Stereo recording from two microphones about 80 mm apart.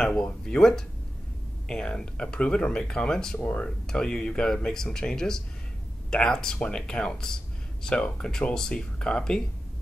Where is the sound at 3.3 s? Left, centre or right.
Centre.